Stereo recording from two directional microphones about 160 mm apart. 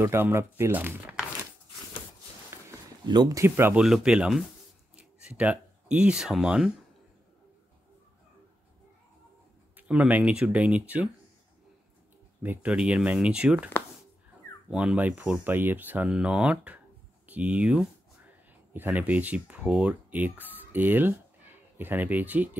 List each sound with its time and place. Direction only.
0.0 s speech: 15° right (ahead or behind)
3.1 s speech: 25° right (ahead or behind)
3.8 s speech: 5° right (ahead or behind)
9.8 s speech: 10° right (ahead or behind)
12.4 s speech: 10° right (ahead or behind)
14.7 s speech: 5° right (ahead or behind)